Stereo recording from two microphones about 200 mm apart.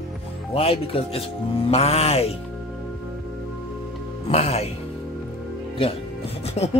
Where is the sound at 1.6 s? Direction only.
30° left (ahead or behind).